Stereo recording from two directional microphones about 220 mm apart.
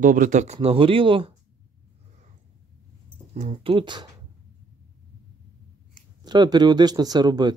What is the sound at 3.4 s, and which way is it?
Speech, 25° right (ahead or behind).